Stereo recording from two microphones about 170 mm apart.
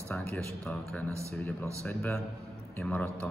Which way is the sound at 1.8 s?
10° left (ahead or behind).